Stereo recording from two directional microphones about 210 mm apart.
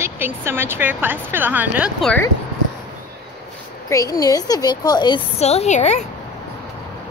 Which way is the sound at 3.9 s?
15° left (ahead or behind).